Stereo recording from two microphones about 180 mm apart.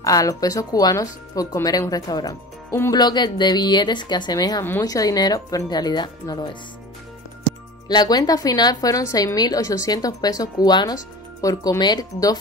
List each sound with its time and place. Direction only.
0.0 s speech: 20° left (ahead or behind)
7.9 s speech: 20° left (ahead or behind)